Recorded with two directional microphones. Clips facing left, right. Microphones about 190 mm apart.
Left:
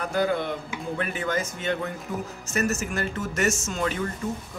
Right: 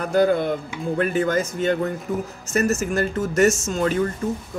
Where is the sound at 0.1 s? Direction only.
45° right (ahead or behind).